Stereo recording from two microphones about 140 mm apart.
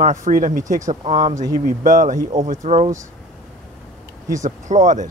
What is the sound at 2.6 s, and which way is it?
Speech, 60° right (ahead or behind).